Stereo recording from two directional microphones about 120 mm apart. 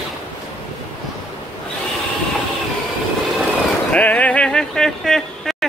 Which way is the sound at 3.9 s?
10° left (ahead or behind).